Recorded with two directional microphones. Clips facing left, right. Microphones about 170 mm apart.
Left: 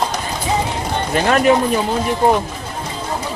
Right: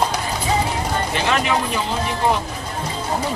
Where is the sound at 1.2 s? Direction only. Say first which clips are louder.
Left 7 dB; 50° left (ahead or behind).